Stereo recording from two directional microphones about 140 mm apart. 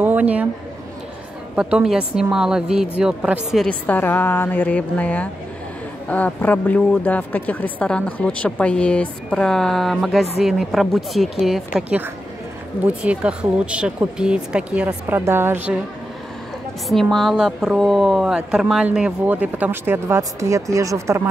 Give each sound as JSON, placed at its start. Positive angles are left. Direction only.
{"t": 0.0, "sound": "a sound", "side_deg": -10}
{"t": 1.5, "sound": "speech", "side_deg": -5}
{"t": 3.6, "sound": "speech", "side_deg": 10}
{"t": 16.9, "sound": "speech", "side_deg": 0}